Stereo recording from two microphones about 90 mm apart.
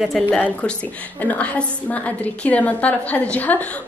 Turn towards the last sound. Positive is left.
turn(degrees=15)  # may be behind; listen again after turning